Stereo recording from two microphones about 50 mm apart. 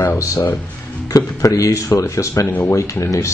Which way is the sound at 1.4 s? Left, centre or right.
Left.